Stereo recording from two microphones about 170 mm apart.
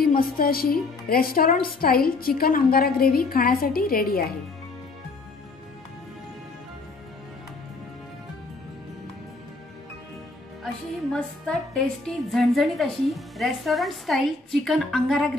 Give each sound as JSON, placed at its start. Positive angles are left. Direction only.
{"t": 0.0, "sound": "a woman's voice", "side_deg": 60}
{"t": 10.6, "sound": "a woman's voice", "side_deg": 5}